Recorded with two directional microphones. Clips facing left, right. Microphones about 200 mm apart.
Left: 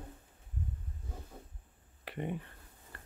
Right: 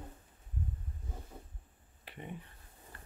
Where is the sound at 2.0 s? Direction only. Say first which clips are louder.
Left 8 dB; 65° left (ahead or behind).